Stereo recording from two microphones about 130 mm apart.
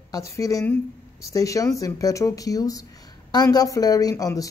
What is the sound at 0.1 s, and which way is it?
Speech, 25° left (ahead or behind).